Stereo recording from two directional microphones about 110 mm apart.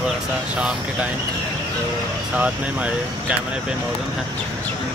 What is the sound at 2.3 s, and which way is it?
Speech, 10° right (ahead or behind).